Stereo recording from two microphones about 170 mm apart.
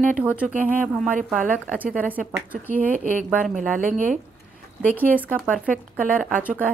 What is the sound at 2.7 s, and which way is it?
Speech, 50° right (ahead or behind).